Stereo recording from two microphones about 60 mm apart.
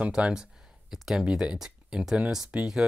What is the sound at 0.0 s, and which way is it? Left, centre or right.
Speech, centre.